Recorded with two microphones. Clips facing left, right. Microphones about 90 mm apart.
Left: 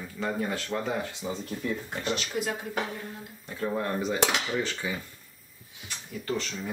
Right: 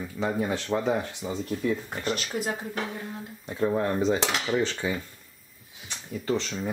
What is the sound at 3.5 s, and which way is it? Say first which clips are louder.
Speech: right 5 dB; 15° right (ahead or behind).